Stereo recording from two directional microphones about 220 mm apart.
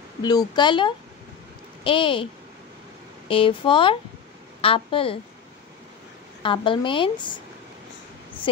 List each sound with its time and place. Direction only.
0.2 s speech: 20° left (ahead or behind)
3.3 s speech: 25° left (ahead or behind)
6.4 s speech: 25° left (ahead or behind)